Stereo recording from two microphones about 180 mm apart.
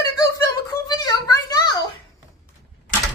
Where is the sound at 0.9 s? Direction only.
20° left (ahead or behind).